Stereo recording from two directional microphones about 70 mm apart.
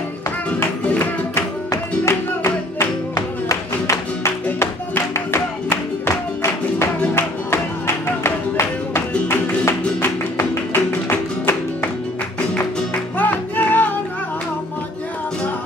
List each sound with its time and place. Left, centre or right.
0.8 s music: left
1.7 s music: left
4.6 s music: left
13.2 s music: left